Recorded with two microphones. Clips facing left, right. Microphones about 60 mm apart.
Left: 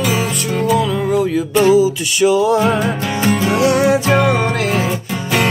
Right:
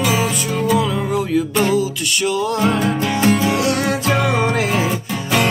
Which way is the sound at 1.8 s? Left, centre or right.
Centre.